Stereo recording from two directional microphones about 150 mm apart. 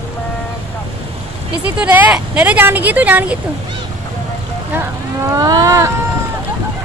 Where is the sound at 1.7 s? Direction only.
10° right (ahead or behind).